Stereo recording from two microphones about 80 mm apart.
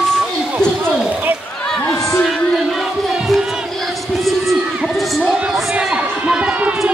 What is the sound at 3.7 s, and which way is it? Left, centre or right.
Crowd, centre.